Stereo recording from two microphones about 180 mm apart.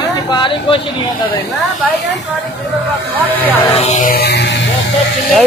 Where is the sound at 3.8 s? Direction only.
45° left (ahead or behind); by 4.5 s 70° left (ahead or behind).